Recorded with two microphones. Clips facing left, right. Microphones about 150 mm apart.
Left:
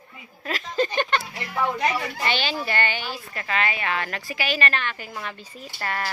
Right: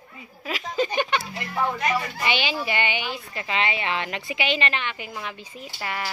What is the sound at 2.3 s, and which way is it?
A woman's voice, 15° right (ahead or behind).